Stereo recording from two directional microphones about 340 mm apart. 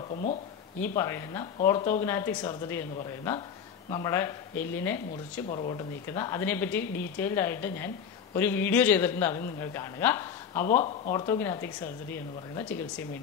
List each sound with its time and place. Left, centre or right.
0.1 s speech: left
0.7 s a woman's voice: centre
10.7 s a woman's voice: left; by 13.0 s centre